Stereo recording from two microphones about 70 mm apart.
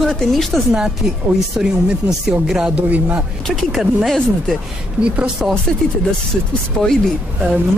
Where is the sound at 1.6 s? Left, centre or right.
Centre.